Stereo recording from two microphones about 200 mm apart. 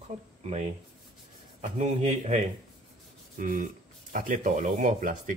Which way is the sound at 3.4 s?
40° right (ahead or behind).